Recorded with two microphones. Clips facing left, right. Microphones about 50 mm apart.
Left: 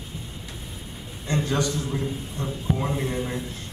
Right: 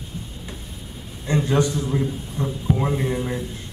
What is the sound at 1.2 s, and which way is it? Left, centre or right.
A man's voice, centre.